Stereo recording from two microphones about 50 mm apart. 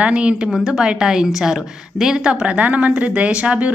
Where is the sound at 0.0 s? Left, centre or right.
Right.